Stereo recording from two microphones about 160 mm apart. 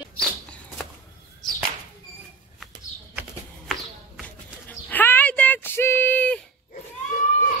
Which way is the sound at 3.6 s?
Centre (ahead or behind).